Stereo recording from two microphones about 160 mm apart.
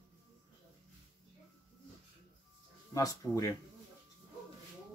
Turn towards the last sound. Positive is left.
turn(degrees=20)  # may be behind; listen again after turning